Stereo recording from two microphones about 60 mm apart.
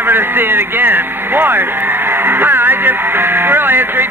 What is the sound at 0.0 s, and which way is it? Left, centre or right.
Speech, right.